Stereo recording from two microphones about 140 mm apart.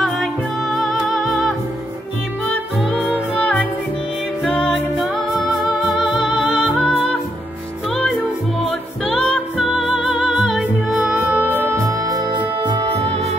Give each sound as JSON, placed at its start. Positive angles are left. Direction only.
{"t": 0.7, "sound": "music", "side_deg": 0}
{"t": 4.6, "sound": "music", "side_deg": 0}
{"t": 8.6, "sound": "music", "side_deg": 5}
{"t": 12.6, "sound": "music", "side_deg": -35}